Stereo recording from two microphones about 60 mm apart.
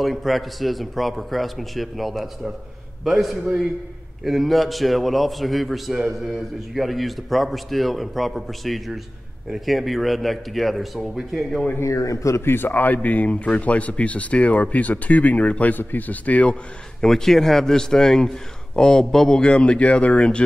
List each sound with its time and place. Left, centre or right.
0.0 s a man's voice: centre
11.8 s a man's voice: left
12.4 s a man's voice: left
17.0 s a man's voice: centre